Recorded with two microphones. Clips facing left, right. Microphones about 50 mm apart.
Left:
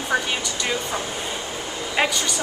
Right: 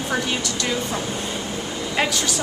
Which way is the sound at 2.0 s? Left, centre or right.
Centre.